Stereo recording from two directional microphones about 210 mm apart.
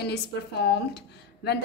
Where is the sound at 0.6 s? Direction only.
50° left (ahead or behind).